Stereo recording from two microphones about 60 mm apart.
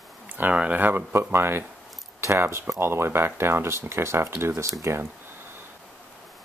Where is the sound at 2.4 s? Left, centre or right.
Right.